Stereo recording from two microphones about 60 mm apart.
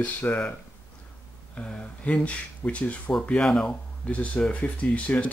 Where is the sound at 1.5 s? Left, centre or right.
Centre.